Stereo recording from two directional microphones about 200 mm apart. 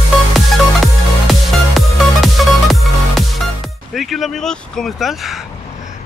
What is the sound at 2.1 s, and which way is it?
Music, centre (ahead or behind).